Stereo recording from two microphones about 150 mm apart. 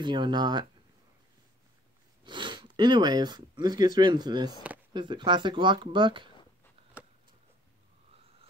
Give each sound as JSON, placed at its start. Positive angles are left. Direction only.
{"t": 0.0, "sound": "speech", "side_deg": -30}
{"t": 2.2, "sound": "speech", "side_deg": -30}